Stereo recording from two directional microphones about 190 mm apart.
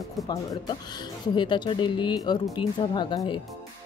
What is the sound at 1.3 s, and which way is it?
Speech, 25° left (ahead or behind).